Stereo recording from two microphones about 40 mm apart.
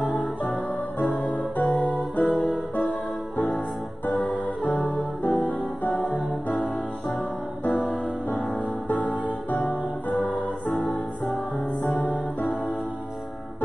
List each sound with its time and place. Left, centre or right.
0.0 s music: left
3.5 s music: left
7.8 s music: left
10.7 s music: centre